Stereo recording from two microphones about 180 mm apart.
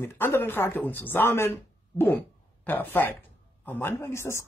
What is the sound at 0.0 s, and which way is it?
Speech, 15° left (ahead or behind).